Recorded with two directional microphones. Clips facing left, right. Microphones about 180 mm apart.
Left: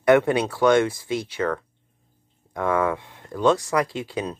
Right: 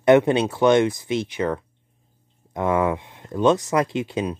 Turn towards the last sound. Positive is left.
turn(degrees=-20)  # may be behind; listen again after turning